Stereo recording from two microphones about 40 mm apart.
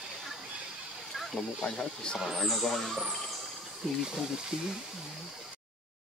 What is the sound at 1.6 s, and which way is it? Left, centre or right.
Speech, centre.